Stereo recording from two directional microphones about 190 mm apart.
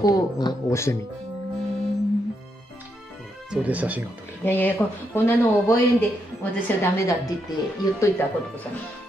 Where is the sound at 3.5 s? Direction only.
5° right (ahead or behind).